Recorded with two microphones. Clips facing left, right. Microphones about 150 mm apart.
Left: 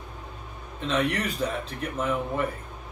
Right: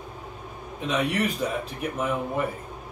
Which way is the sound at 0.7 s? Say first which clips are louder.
Right 1 dB; 10° right (ahead or behind).